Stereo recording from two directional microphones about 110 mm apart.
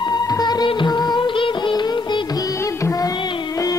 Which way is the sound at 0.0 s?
40° left (ahead or behind).